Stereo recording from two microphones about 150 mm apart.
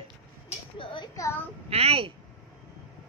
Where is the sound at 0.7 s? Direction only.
30° left (ahead or behind).